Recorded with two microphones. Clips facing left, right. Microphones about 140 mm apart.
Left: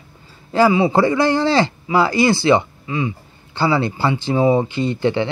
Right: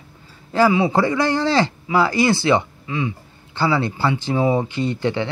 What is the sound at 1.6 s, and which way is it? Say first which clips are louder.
Speech: left 2 dB; 10° left (ahead or behind).